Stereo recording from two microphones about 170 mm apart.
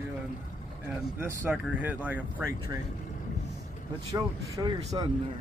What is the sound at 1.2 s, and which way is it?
Speech, 10° right (ahead or behind).